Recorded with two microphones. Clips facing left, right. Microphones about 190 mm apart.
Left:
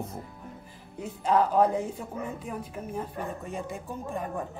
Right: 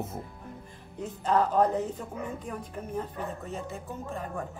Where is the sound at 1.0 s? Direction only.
10° left (ahead or behind).